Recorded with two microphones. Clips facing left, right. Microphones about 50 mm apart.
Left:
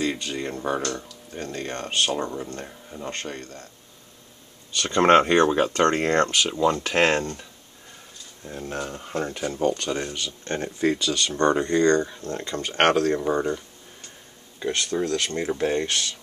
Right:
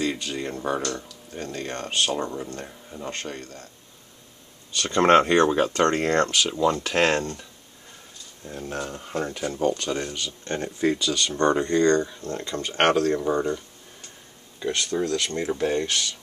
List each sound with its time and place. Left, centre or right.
0.0 s a sound: centre
0.9 s speech: centre
4.7 s speech: centre
8.5 s speech: centre
9.8 s speech: centre
14.6 s speech: centre